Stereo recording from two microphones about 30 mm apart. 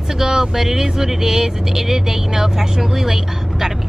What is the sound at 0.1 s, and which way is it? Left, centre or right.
Speech, centre.